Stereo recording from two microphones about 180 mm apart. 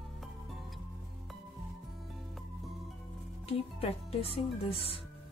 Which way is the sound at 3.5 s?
35° left (ahead or behind).